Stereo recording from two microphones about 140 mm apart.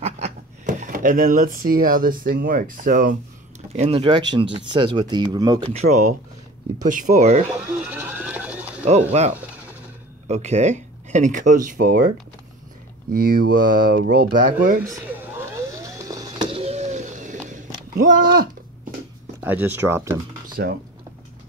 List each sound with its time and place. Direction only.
0.0 s speech: 55° right (ahead or behind); by 3.2 s 80° right
3.7 s speech: 45° right (ahead or behind)
5.7 s speech: 55° right (ahead or behind)
7.5 s a sound: 15° right (ahead or behind)
8.8 s speech: 50° right (ahead or behind)
10.2 s speech: 55° right (ahead or behind); by 12.1 s 90° right
13.1 s speech: 90° right
15.0 s vehicle: 20° right (ahead or behind); by 17.4 s 60° right (ahead or behind)
17.9 s speech: 90° right
19.4 s speech: 15° right (ahead or behind)
20.6 s speech: 90° right